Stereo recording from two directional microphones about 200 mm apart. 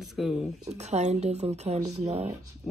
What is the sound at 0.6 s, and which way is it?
Speech, 35° right (ahead or behind).